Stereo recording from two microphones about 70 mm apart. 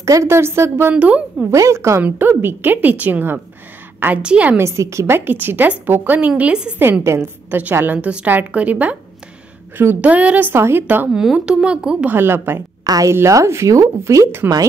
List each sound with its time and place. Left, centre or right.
0.0 s a woman's voice: right
0.9 s a woman's voice: centre
1.5 s speech: right
2.0 s a woman's voice: right
4.2 s a woman's voice: centre
4.6 s a woman's voice: right; by 6.7 s centre
6.8 s a woman's voice: right
7.5 s a woman's voice: right
10.0 s a woman's voice: right
10.5 s a woman's voice: right
11.3 s a woman's voice: centre
12.1 s a woman's voice: right
12.8 s a woman's voice: right
13.1 s speech: right